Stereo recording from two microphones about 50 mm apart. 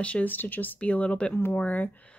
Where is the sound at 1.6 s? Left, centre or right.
Left.